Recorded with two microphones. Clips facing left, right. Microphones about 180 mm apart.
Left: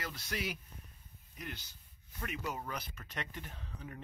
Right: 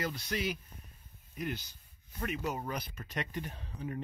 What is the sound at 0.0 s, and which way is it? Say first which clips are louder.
Speech: right 5 dB; 5° left (ahead or behind).